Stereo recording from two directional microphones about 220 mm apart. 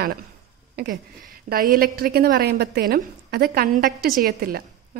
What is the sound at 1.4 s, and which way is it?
A woman's voice, 40° right (ahead or behind).